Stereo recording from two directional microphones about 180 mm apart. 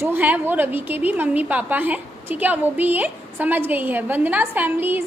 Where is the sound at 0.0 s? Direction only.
10° right (ahead or behind).